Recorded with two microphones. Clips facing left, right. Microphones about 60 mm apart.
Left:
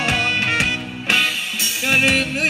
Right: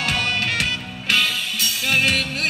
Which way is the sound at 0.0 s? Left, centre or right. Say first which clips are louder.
Left 3 dB; left.